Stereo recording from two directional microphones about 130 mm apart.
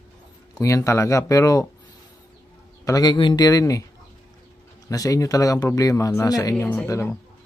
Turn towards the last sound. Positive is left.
turn(degrees=20)  # may be behind; listen again after turning